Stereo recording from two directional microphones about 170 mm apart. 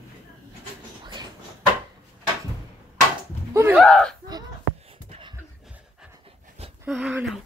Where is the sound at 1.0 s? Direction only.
25° right (ahead or behind).